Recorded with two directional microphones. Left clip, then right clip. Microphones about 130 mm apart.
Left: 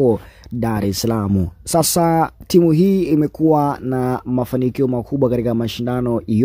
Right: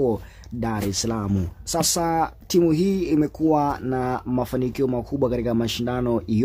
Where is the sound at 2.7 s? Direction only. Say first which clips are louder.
Left 6 dB; 40° left (ahead or behind).